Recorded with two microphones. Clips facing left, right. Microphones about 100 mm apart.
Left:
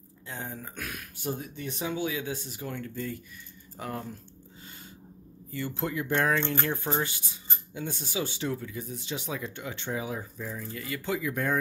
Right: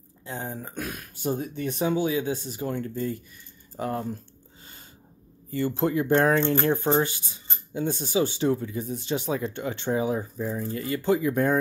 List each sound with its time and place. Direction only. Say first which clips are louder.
0.3 s speech: right 5 dB; 30° right (ahead or behind)
1.4 s speech: right 8 dB; 45° right (ahead or behind)
1.9 s speech: right 6 dB; 30° right (ahead or behind)
5.5 s speech: right 8 dB; 40° right (ahead or behind)